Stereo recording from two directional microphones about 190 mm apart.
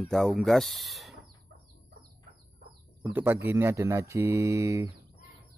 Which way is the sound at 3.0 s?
10° right (ahead or behind).